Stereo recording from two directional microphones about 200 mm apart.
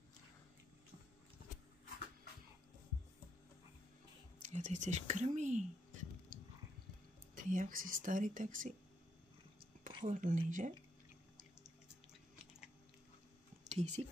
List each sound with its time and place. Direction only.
4.4 s speech: 35° right (ahead or behind)
7.3 s speech: 40° right (ahead or behind)
10.0 s speech: 40° right (ahead or behind)
13.7 s speech: 35° right (ahead or behind)